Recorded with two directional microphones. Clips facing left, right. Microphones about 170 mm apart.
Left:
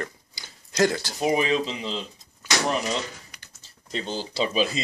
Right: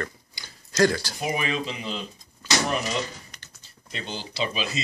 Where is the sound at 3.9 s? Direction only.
35° left (ahead or behind).